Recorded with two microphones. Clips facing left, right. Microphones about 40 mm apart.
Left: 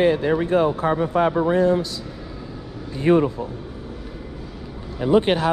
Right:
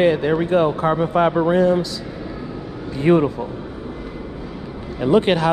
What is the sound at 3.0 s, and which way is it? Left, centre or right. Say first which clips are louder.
Speech: right 2 dB; right.